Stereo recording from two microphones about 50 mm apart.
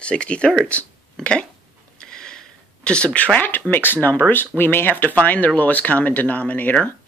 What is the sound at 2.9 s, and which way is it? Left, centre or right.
Speech, left.